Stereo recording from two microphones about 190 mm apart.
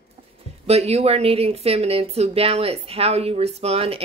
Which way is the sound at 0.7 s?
35° right (ahead or behind).